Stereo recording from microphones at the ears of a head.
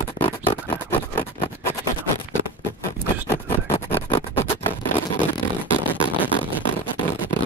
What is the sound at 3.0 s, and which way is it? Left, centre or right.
Scratch, right.